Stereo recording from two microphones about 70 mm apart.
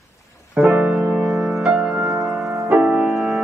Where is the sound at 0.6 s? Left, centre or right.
Centre.